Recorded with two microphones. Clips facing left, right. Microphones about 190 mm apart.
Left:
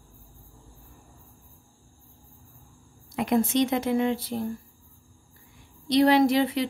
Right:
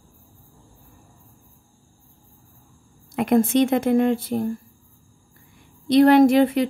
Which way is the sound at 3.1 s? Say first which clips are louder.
Right 5 dB; 55° right (ahead or behind).